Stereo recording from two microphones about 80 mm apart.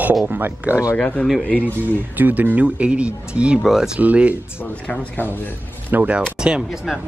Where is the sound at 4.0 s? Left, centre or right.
Centre.